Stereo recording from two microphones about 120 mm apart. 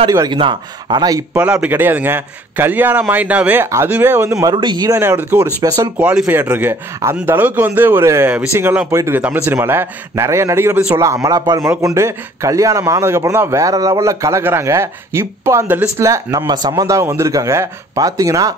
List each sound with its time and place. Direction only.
0.3 s speech: 40° right (ahead or behind)
1.3 s a man's voice: 10° right (ahead or behind)
4.4 s speech: 35° right (ahead or behind)
4.9 s a man's voice: 15° right (ahead or behind)
5.6 s speech: 35° right (ahead or behind)
5.9 s a man's voice: 10° right (ahead or behind); by 18.5 s 30° right (ahead or behind)